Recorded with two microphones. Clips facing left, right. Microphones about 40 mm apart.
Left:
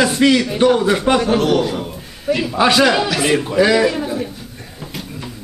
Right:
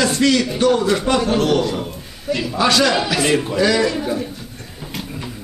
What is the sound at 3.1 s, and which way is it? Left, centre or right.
Speech, centre.